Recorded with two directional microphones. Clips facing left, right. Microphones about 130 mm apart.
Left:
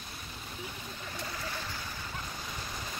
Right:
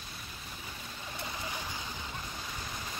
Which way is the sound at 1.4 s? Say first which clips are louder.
Even; 15° right (ahead or behind).